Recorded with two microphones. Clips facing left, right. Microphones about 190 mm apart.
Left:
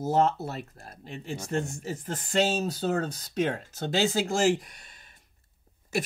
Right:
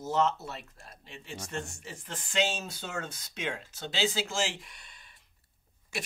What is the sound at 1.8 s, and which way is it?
Speech, 40° left (ahead or behind).